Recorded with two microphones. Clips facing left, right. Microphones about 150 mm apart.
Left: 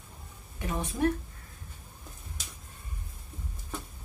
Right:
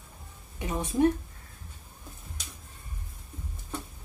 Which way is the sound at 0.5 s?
20° right (ahead or behind).